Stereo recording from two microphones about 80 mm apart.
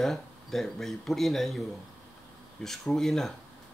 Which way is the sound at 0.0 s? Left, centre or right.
Centre.